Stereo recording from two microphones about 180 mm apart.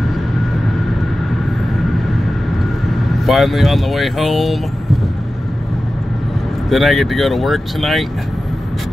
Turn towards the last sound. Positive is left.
turn(degrees=0)  # may be behind; listen again after turning